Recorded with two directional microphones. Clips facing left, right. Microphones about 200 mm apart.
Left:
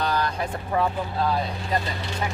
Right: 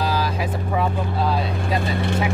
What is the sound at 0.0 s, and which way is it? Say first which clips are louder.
Vehicle: right 2 dB; 5° right (ahead or behind).